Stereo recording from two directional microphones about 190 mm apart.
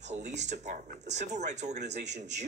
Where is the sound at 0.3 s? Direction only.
40° right (ahead or behind).